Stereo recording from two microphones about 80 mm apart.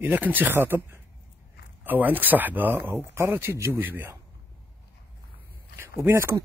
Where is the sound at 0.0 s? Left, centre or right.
Right.